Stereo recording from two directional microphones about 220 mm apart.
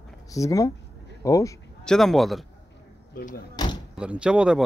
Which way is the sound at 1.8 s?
Centre (ahead or behind).